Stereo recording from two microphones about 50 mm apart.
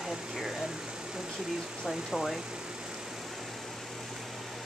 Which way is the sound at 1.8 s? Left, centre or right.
Centre.